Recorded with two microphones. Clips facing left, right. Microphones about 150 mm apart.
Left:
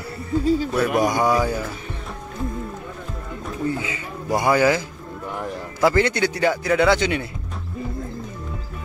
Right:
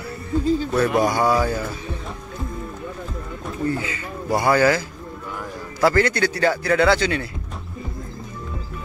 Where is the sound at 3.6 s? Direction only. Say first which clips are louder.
Right 1 dB; 15° left (ahead or behind).